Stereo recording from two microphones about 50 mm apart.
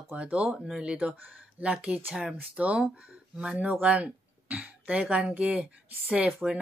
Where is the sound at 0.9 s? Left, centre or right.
Right.